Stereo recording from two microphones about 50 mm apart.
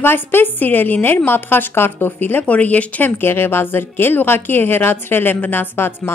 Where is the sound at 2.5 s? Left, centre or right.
Left.